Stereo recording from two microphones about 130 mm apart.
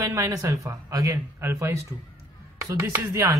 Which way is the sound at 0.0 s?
30° right (ahead or behind).